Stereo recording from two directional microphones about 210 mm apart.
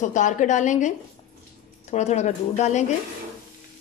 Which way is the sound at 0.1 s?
35° left (ahead or behind).